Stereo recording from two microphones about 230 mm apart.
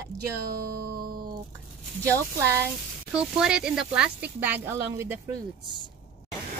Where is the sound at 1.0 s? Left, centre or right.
Right.